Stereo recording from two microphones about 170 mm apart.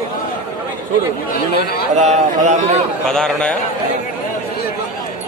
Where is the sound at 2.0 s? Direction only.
40° right (ahead or behind).